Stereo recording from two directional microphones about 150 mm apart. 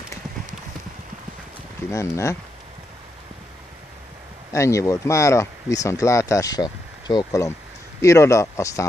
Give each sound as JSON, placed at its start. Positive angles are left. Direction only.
{"t": 1.9, "sound": "speech", "side_deg": 20}
{"t": 4.5, "sound": "speech", "side_deg": 20}